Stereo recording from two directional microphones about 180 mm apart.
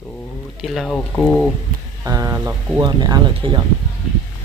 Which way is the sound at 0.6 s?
Centre (ahead or behind).